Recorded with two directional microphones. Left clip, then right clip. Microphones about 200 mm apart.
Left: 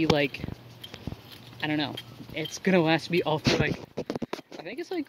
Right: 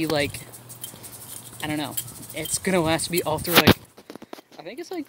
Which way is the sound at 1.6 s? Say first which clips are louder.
Even; 5° left (ahead or behind).